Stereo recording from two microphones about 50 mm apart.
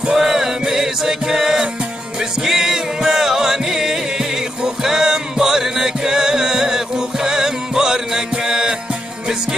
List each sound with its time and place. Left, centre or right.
0.0 s music: centre